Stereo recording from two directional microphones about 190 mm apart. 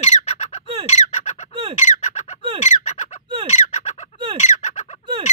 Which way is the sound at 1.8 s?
35° left (ahead or behind).